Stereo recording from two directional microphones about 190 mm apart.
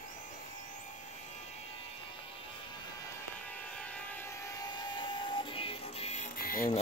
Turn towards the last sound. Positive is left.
turn(degrees=50)  # may be behind; listen again after turning